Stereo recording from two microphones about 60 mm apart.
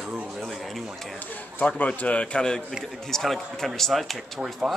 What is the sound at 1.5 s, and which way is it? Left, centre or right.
A man's voice, left.